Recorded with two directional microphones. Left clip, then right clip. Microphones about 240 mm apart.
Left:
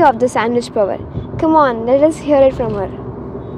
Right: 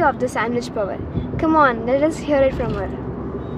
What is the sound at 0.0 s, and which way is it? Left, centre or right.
Speech, centre.